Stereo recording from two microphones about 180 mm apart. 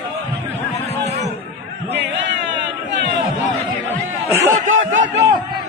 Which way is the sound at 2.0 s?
80° right.